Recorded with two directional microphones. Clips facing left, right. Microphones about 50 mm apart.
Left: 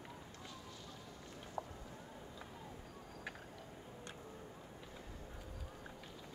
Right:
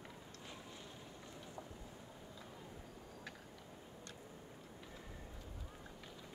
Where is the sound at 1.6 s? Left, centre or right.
Left.